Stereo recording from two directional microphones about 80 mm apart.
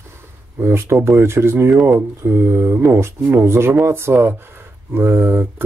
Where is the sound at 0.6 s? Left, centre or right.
Right.